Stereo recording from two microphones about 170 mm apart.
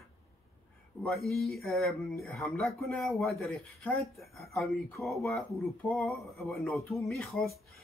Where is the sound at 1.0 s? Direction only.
Centre (ahead or behind).